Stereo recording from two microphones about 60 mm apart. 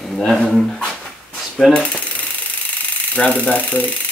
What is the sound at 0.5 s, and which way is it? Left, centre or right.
Speech, centre.